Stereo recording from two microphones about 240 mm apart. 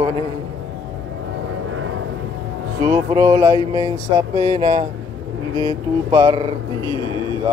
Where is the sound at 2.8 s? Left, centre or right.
Centre.